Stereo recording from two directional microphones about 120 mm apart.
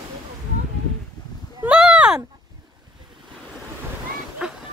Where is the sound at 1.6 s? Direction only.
5° right (ahead or behind).